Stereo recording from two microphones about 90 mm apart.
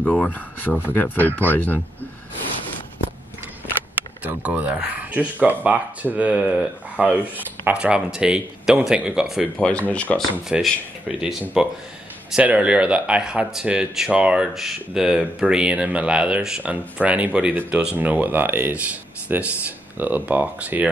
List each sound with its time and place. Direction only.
0.0 s speech: 15° left (ahead or behind)
0.7 s speech: 15° right (ahead or behind)
0.9 s speech: 20° left (ahead or behind)
4.2 s speech: 15° right (ahead or behind)
9.6 s speech: 15° left (ahead or behind)
10.6 s speech: 5° right (ahead or behind)